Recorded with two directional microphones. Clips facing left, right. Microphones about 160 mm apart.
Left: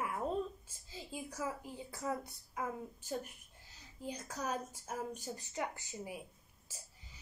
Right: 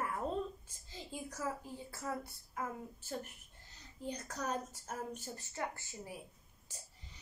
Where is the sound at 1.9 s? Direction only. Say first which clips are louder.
Left 3 dB; 15° left (ahead or behind).